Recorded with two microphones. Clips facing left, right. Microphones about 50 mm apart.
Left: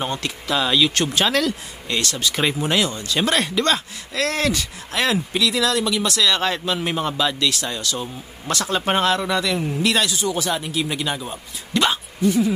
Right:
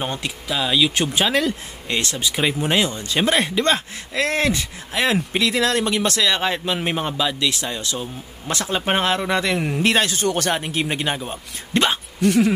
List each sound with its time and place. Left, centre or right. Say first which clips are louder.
0.0 s speech: left 1 dB; centre
0.5 s speech: left 1 dB; centre; by 6.3 s right
6.3 s speech: even; centre
12.2 s speech: right 2 dB; right